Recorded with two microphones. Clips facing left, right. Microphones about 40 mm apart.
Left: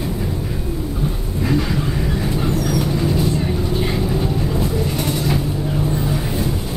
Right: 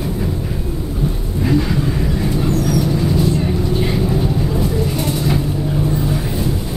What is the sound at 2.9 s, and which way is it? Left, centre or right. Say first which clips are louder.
Vehicle: right 2 dB; centre.